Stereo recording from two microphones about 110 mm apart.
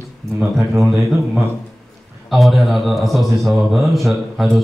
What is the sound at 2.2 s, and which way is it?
A man's voice, centre (ahead or behind).